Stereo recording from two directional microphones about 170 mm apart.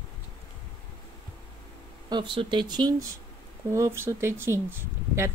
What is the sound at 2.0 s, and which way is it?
A woman's voice, 25° right (ahead or behind).